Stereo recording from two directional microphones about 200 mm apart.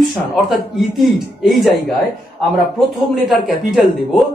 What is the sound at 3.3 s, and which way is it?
Speech, centre (ahead or behind).